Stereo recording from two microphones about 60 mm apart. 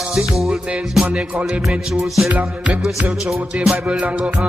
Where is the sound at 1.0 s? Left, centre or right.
Centre.